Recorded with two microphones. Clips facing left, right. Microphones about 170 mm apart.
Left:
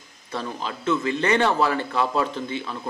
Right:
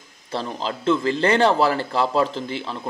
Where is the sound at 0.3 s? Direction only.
30° right (ahead or behind).